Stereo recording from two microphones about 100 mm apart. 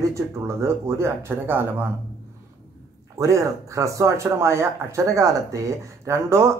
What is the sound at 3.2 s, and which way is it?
Speech, 35° right (ahead or behind).